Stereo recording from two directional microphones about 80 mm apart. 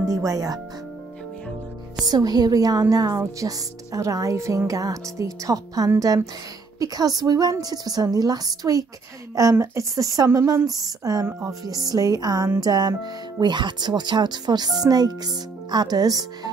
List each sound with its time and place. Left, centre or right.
0.1 s a woman's voice: right
2.0 s a woman's voice: right
11.2 s speech: right
11.6 s a woman's voice: right
13.4 s speech: right